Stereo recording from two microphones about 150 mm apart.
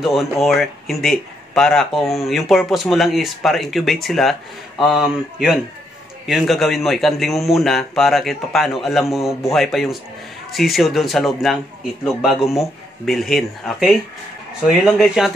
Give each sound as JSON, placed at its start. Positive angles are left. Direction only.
{"t": 0.0, "sound": "speech", "side_deg": 0}